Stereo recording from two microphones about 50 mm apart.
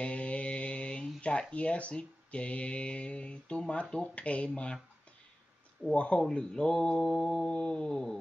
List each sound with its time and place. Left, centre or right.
0.0 s mantra: left
1.5 s speech: left
5.9 s speech: left
6.3 s mantra: centre